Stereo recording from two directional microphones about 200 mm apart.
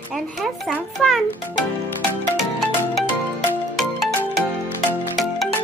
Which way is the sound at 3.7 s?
Centre (ahead or behind).